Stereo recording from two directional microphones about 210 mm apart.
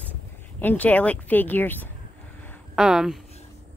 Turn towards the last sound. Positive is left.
turn(degrees=0)  # may be behind; listen again after turning